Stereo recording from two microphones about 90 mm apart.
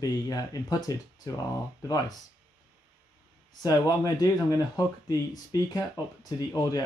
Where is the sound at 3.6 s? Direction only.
45° left (ahead or behind).